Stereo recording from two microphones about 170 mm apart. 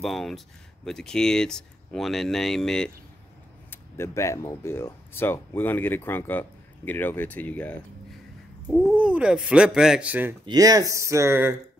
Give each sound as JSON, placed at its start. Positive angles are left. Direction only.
{"t": 0.0, "sound": "speech", "side_deg": 0}
{"t": 3.7, "sound": "speech", "side_deg": 15}
{"t": 8.8, "sound": "speech", "side_deg": -5}
{"t": 10.4, "sound": "speech", "side_deg": -20}